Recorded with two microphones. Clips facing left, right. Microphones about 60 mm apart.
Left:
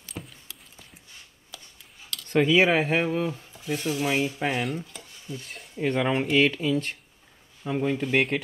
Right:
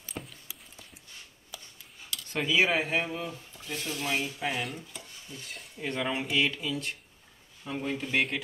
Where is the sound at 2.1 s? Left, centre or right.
Centre.